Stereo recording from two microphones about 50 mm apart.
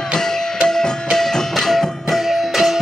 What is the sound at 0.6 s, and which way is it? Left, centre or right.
Music, centre.